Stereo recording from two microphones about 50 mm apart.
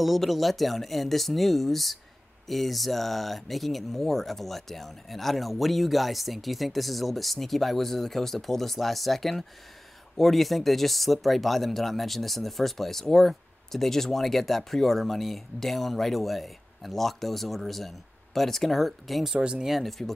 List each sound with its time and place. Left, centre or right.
0.0 s speech: centre
19.3 s speech: centre
19.6 s speech: centre